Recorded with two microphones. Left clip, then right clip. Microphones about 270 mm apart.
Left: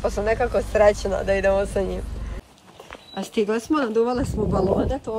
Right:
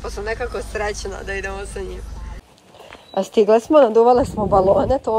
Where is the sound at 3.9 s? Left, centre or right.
Right.